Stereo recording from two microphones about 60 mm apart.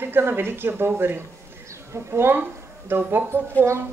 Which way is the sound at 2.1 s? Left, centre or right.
Right.